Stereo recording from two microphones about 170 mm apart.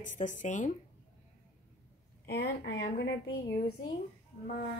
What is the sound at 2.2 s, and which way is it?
A woman's voice, 70° left (ahead or behind).